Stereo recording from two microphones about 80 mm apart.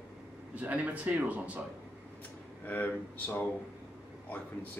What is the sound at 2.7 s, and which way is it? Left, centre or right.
Speech, left.